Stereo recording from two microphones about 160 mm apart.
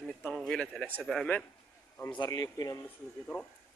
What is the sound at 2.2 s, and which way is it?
Speech, 20° left (ahead or behind).